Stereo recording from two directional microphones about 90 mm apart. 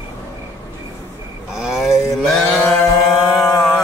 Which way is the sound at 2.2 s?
10° left (ahead or behind).